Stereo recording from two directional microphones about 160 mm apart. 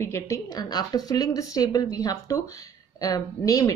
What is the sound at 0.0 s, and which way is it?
Speech, 20° left (ahead or behind).